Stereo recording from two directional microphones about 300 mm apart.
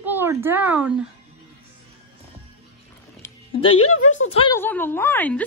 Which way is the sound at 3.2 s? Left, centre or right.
Centre.